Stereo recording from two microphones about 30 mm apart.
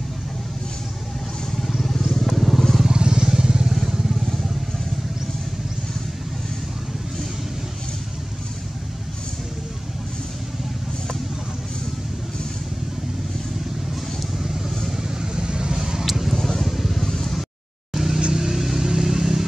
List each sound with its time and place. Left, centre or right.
1.8 s vehicle: centre
2.9 s vehicle: right
15.3 s vehicle: right
16.1 s vehicle: centre
16.3 s vehicle: centre
17.1 s a sound: centre
17.9 s vehicle: centre